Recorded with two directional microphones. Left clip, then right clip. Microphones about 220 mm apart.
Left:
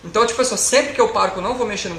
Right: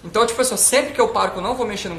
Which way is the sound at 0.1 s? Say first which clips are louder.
Left 1 dB; 20° right (ahead or behind).